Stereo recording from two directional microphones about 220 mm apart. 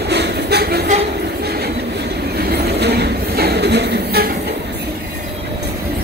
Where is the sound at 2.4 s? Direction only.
45° right (ahead or behind).